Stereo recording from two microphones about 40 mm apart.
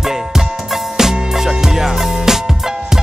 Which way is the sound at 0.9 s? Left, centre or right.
Centre.